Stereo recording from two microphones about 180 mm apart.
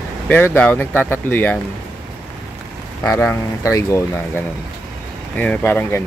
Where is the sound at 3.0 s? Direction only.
10° left (ahead or behind).